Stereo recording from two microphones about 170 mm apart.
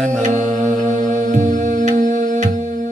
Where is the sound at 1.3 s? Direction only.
45° right (ahead or behind).